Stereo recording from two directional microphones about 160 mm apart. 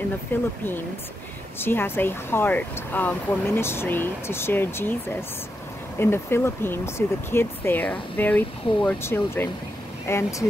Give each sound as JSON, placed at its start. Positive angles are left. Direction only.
{"t": 0.3, "sound": "speech", "side_deg": 15}
{"t": 1.6, "sound": "speech", "side_deg": 15}
{"t": 5.9, "sound": "speech", "side_deg": 15}